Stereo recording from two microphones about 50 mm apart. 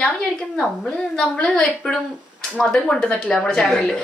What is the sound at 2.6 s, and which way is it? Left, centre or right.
A woman's voice, centre.